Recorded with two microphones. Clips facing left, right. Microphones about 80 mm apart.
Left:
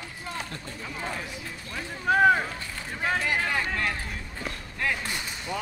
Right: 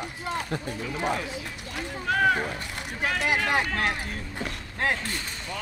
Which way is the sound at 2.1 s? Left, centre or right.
Centre.